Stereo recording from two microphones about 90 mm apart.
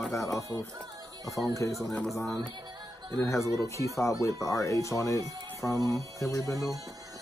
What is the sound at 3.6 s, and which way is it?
Speech, 35° left (ahead or behind).